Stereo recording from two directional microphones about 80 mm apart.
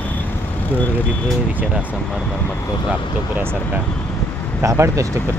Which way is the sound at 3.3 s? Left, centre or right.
Right.